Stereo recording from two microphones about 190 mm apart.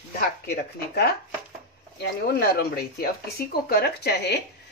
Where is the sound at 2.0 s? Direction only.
55° left (ahead or behind).